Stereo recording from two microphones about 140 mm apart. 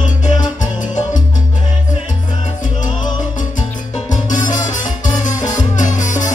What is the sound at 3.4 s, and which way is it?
Music, 65° left (ahead or behind).